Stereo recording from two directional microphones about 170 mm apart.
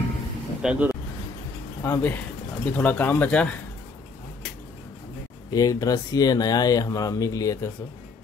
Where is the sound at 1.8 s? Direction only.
10° left (ahead or behind).